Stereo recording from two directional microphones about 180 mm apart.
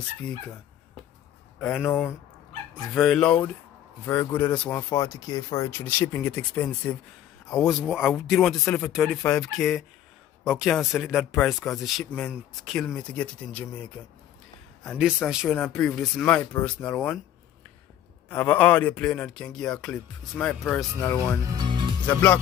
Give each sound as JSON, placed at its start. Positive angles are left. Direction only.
{"t": 1.6, "sound": "speech", "side_deg": 10}
{"t": 2.9, "sound": "speech", "side_deg": 0}
{"t": 7.8, "sound": "speech", "side_deg": -5}
{"t": 9.2, "sound": "speech", "side_deg": 15}
{"t": 10.4, "sound": "speech", "side_deg": 0}
{"t": 14.8, "sound": "speech", "side_deg": 0}
{"t": 18.3, "sound": "speech", "side_deg": 10}
{"t": 21.5, "sound": "music", "side_deg": -25}
{"t": 22.0, "sound": "speech", "side_deg": 10}